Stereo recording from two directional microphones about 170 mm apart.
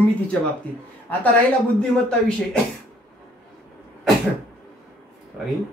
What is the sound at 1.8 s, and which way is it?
Speech, 5° left (ahead or behind).